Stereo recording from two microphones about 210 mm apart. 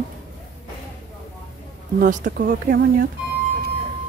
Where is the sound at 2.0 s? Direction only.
40° right (ahead or behind).